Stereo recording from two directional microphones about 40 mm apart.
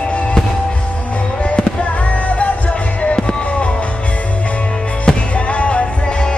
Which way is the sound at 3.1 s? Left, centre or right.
Left.